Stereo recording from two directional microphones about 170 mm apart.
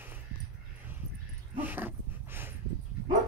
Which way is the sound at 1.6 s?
10° right (ahead or behind).